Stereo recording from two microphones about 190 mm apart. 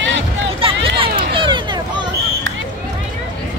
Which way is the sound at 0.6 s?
30° right (ahead or behind).